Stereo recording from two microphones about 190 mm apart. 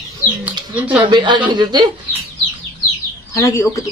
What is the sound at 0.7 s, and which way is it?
Speech, 10° right (ahead or behind).